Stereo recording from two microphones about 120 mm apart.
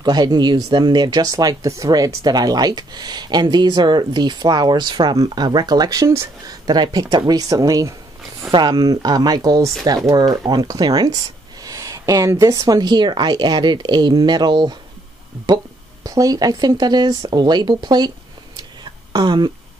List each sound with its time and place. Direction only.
0.0 s speech: 35° right (ahead or behind)
19.1 s speech: 40° right (ahead or behind)